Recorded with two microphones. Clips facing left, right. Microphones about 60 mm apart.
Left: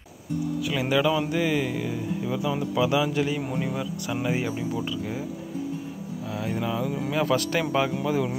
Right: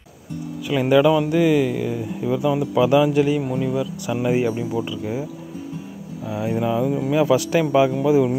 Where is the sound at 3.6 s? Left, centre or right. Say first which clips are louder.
Right 6 dB; centre.